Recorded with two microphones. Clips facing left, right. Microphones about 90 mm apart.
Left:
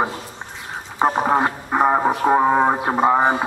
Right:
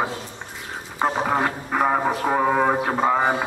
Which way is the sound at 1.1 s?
20° left (ahead or behind).